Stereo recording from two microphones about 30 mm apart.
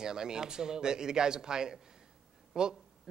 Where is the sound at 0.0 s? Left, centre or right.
Right.